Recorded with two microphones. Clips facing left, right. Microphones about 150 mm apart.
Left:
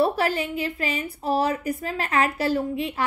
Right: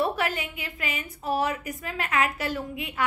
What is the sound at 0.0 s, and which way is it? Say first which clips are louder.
A woman's voice: left 5 dB; 35° left (ahead or behind).